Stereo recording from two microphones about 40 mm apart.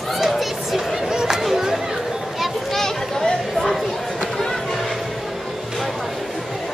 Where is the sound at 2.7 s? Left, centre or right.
Centre.